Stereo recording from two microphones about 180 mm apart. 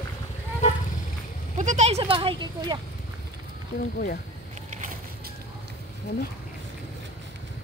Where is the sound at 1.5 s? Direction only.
40° right (ahead or behind); by 2.7 s 25° right (ahead or behind).